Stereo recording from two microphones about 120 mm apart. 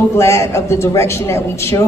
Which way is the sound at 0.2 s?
20° left (ahead or behind).